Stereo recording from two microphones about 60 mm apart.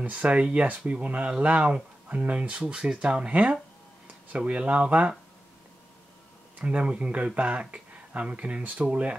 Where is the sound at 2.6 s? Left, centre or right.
Centre.